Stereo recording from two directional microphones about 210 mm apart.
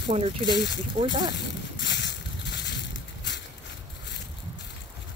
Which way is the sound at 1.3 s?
55° left (ahead or behind).